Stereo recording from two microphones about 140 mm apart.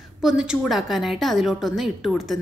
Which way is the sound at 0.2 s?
5° right (ahead or behind).